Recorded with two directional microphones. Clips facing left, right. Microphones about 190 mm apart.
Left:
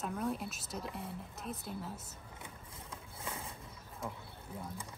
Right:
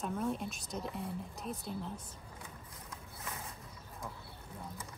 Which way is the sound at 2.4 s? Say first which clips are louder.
Even; 30° left (ahead or behind).